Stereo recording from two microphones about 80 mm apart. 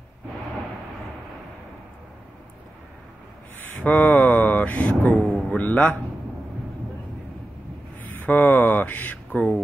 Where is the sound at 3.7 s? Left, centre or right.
Centre.